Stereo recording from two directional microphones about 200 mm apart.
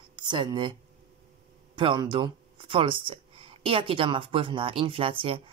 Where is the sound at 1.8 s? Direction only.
25° right (ahead or behind).